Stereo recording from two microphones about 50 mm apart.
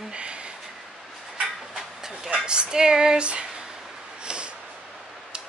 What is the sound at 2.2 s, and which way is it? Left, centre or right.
Speech, centre.